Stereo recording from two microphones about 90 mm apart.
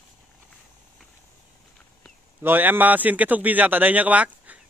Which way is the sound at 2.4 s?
20° right (ahead or behind).